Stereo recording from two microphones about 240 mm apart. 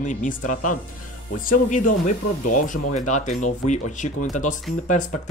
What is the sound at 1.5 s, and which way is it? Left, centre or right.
Speech, left.